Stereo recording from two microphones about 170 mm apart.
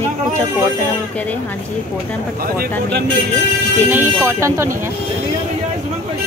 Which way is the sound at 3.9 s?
15° right (ahead or behind).